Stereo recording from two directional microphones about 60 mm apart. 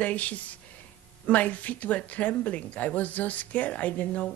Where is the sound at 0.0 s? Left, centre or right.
Left.